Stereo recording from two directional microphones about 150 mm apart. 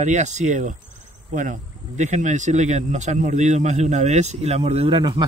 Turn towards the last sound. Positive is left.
turn(degrees=-30)  # may be behind; listen again after turning